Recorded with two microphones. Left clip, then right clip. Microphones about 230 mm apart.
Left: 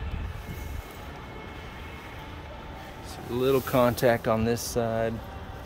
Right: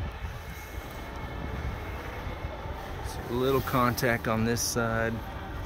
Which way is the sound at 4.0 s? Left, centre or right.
Centre.